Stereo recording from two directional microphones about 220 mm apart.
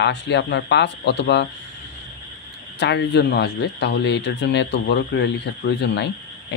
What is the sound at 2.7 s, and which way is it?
Speech, 50° left (ahead or behind).